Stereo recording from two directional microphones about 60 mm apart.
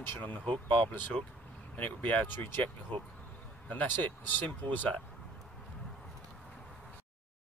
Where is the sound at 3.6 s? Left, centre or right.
Left.